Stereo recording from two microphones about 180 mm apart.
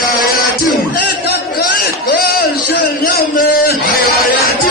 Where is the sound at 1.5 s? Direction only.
55° left (ahead or behind).